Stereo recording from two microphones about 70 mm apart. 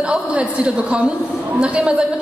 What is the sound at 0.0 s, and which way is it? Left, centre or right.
A woman's voice, centre.